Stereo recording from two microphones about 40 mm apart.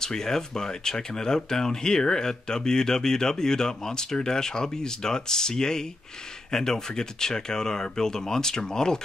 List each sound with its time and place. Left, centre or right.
0.0 s speech: centre